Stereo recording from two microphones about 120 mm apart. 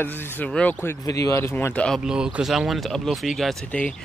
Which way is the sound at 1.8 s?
Centre (ahead or behind).